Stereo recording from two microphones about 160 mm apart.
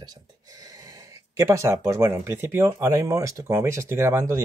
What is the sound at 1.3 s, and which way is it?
Speech, 15° right (ahead or behind).